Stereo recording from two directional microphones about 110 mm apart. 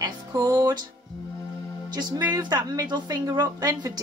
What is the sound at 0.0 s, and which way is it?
Music, 30° right (ahead or behind).